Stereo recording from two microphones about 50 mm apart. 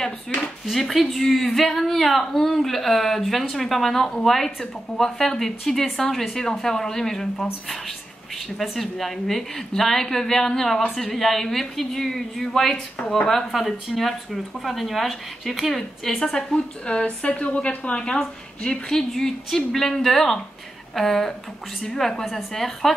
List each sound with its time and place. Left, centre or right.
0.7 s a woman's voice: centre
8.5 s a woman's voice: centre
16.8 s speech: left
17.9 s a woman's voice: centre